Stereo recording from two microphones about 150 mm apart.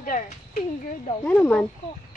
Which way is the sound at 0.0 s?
60° left (ahead or behind).